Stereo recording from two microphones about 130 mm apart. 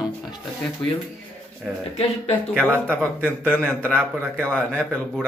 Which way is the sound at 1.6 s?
5° right (ahead or behind).